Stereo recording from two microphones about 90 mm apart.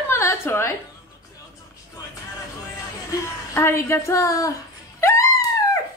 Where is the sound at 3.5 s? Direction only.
30° left (ahead or behind).